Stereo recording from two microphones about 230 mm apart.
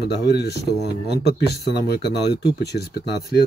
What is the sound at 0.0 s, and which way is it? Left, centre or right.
Speech, left.